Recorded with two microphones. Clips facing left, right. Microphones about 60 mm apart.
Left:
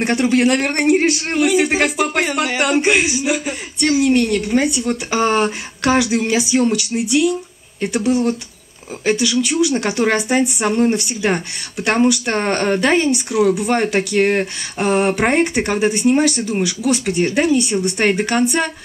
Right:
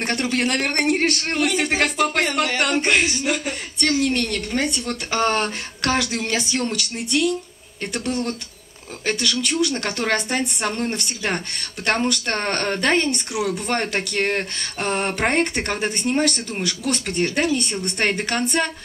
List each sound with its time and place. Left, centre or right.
0.0 s a man's voice: centre